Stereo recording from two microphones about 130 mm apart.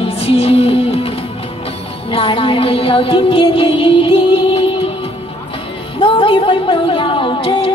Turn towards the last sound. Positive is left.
turn(degrees=45)  # may be behind; listen again after turning